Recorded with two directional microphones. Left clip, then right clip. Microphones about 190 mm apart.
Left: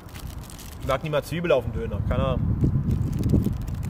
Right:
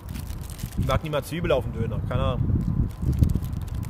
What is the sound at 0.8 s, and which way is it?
Speech, 5° right (ahead or behind).